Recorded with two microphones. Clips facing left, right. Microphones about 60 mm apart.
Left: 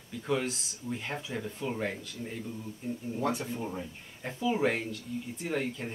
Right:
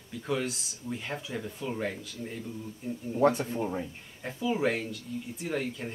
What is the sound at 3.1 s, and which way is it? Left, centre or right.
Speech, right.